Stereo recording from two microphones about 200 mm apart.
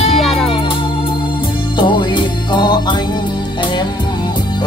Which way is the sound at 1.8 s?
25° left (ahead or behind).